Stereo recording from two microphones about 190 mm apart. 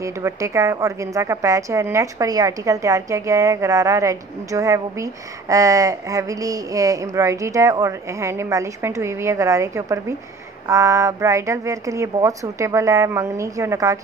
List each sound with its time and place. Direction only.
0.0 s a woman's voice: 15° right (ahead or behind)